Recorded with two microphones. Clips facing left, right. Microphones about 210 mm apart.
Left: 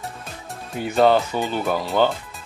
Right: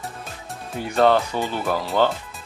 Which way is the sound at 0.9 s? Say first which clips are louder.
Left 1 dB; centre (ahead or behind).